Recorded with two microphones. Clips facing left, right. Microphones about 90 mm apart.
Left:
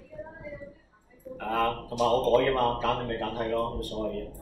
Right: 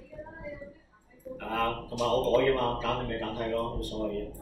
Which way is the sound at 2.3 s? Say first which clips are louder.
Left 2 dB; 20° left (ahead or behind).